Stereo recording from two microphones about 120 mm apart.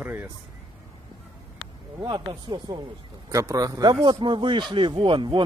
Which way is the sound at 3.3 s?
30° right (ahead or behind).